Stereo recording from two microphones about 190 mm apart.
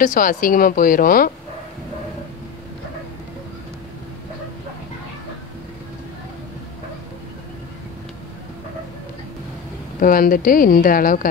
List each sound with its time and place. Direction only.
0.0 s a woman's voice: 45° left (ahead or behind)
9.9 s a woman's voice: 45° left (ahead or behind)